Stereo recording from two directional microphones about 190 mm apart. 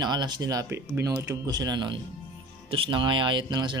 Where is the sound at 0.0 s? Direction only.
20° right (ahead or behind).